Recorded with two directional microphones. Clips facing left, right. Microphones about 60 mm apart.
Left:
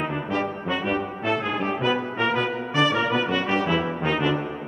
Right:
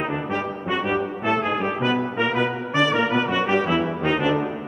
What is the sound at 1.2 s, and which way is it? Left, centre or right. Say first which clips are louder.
Brass instrument: right 3 dB; centre.